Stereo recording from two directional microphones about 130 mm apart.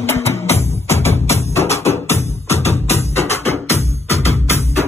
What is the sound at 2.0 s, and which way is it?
Music, 20° left (ahead or behind).